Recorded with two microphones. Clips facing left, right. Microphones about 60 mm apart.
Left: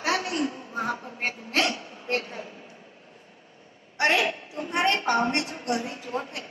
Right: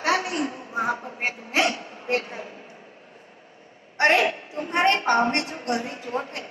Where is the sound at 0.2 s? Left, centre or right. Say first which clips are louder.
Right 1 dB; right.